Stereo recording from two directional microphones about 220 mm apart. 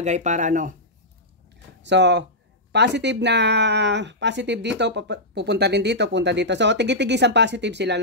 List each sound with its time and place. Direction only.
0.0 s speech: 35° right (ahead or behind)
1.8 s speech: 50° right (ahead or behind)